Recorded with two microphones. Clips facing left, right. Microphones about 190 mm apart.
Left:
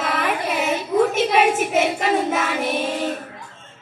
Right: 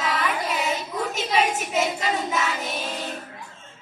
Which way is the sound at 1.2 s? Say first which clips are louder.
Left 6 dB; 55° left (ahead or behind).